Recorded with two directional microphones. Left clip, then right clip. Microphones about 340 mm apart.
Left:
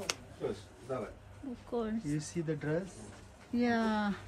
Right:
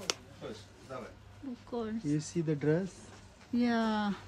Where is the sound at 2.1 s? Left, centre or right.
Centre.